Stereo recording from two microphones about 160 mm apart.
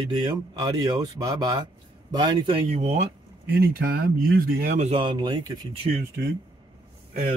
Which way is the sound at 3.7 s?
70° right (ahead or behind).